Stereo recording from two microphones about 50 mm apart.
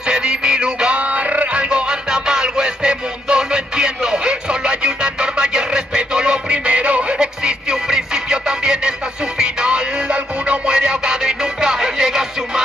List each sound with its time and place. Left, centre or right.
0.0 s music: centre